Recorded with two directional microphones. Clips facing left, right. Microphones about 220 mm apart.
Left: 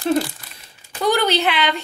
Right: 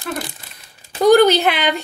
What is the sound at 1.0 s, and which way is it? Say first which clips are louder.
Speech: right 7 dB; 45° right (ahead or behind).